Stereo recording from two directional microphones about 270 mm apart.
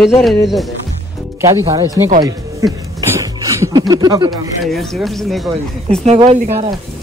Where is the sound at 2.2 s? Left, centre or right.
Centre.